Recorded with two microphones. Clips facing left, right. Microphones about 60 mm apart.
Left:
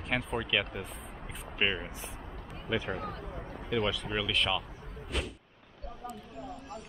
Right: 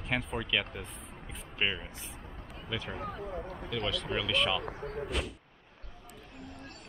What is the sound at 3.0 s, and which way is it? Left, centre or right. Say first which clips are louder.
Speech: right 2 dB; centre.